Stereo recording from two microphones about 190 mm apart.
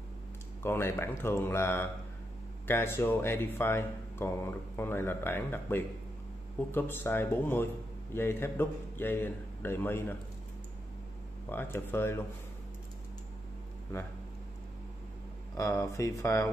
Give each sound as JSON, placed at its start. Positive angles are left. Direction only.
{"t": 0.6, "sound": "a man's voice", "side_deg": 15}
{"t": 11.4, "sound": "a man's voice", "side_deg": 10}
{"t": 15.5, "sound": "a man's voice", "side_deg": 15}